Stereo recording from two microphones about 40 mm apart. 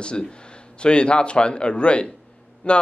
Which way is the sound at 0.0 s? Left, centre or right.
Left.